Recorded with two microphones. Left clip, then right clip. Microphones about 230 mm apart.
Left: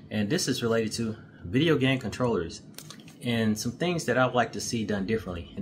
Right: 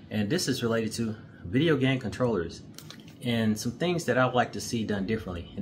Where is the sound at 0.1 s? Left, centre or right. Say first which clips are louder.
Left 1 dB; centre.